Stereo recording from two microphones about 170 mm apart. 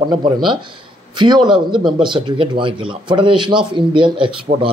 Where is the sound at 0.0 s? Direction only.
25° right (ahead or behind).